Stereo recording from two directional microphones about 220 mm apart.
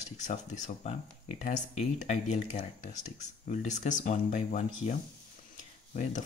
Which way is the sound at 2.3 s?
30° left (ahead or behind).